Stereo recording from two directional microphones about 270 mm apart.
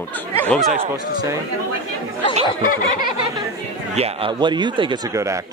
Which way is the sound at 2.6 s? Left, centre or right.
Left.